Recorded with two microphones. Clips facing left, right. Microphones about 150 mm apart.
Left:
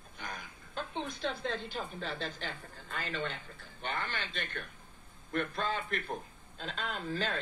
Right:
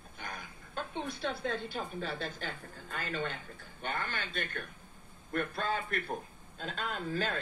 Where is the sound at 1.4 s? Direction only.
50° right (ahead or behind).